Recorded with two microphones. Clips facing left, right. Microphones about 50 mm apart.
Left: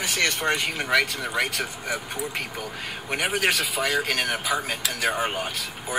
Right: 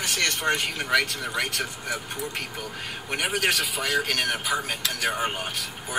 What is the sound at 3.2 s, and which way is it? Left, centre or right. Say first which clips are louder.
Speech: left 1 dB; centre.